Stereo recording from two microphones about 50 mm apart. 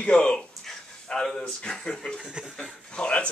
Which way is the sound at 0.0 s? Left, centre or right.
Left.